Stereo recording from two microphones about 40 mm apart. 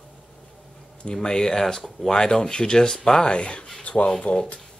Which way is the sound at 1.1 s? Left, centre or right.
Centre.